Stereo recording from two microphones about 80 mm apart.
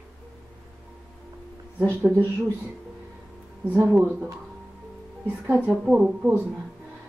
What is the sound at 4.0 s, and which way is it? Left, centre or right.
Speech, right.